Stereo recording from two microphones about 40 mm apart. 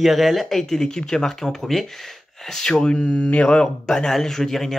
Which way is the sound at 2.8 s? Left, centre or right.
Left.